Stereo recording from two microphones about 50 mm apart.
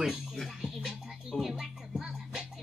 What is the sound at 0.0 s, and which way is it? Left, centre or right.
Music, centre.